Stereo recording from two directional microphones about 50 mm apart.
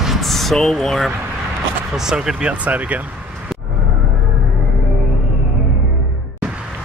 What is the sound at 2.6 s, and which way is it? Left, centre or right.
Speech, right.